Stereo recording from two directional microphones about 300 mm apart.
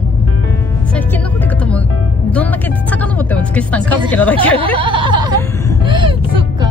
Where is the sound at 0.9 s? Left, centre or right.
Centre.